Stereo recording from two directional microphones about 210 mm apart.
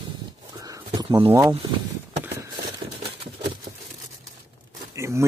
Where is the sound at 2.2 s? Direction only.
15° right (ahead or behind).